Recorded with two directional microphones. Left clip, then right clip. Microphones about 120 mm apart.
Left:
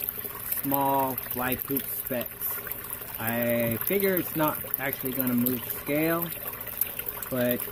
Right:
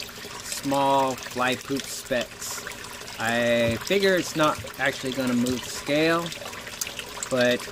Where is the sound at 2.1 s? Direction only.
5° right (ahead or behind).